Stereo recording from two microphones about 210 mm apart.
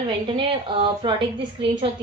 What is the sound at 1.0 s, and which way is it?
Speech, 20° right (ahead or behind).